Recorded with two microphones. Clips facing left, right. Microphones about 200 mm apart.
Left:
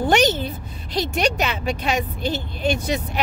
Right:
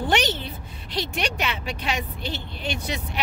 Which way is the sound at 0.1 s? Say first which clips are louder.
Left 6 dB; 45° left (ahead or behind).